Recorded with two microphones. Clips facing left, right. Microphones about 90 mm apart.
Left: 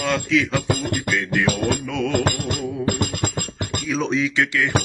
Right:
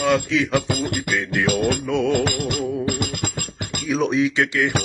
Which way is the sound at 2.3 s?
45° left (ahead or behind).